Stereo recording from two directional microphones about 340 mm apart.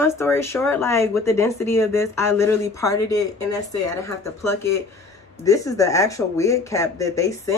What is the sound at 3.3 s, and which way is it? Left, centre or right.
Speech, left.